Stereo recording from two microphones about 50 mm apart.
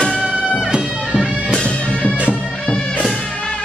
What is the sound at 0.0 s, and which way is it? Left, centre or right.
Music, centre.